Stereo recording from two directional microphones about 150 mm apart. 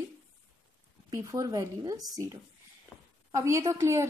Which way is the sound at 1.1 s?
20° right (ahead or behind).